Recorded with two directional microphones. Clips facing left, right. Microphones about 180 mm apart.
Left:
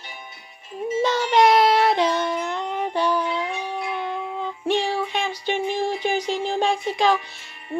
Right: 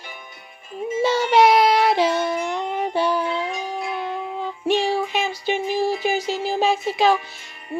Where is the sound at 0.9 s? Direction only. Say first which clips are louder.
Right 2 dB; 10° right (ahead or behind).